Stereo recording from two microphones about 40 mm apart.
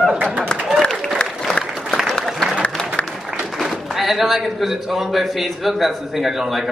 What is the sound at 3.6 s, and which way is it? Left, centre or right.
A man's voice, centre.